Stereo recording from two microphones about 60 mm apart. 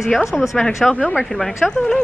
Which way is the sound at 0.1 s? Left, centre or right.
Centre.